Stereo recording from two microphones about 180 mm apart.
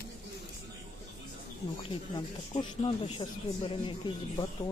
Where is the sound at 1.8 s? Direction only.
30° left (ahead or behind).